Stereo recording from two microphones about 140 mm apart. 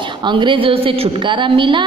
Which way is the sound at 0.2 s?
35° right (ahead or behind).